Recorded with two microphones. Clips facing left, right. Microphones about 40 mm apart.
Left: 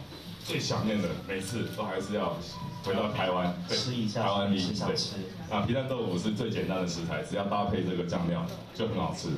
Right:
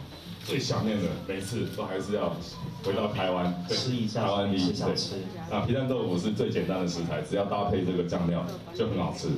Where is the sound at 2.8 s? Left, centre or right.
Left.